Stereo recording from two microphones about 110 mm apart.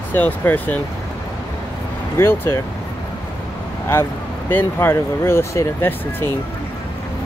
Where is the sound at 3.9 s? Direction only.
20° left (ahead or behind).